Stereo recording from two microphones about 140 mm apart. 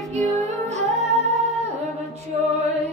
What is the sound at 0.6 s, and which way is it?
Humming, 50° right (ahead or behind).